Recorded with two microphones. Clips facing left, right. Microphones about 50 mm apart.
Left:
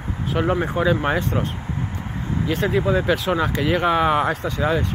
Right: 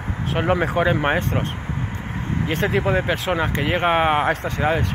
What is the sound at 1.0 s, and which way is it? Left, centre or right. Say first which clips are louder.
Speech: right 1 dB; right.